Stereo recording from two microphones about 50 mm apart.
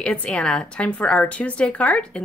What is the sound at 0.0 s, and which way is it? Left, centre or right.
A woman's voice, left.